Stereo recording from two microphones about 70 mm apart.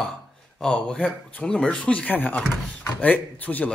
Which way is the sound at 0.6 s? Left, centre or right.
Centre.